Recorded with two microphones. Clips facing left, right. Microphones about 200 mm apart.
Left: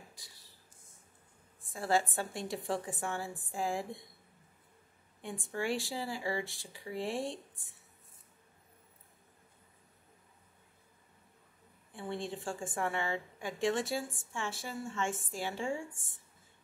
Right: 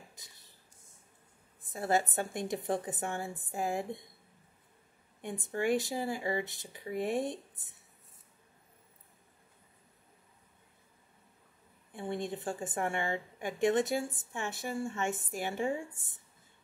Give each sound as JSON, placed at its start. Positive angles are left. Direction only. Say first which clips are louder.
{"t": 1.6, "sound": "a woman's voice", "louder": "right 1 dB", "side_deg": -20}
{"t": 5.2, "sound": "a woman's voice", "louder": "right 4 dB", "side_deg": -20}
{"t": 12.2, "sound": "a woman's voice", "louder": "right 2 dB", "side_deg": -20}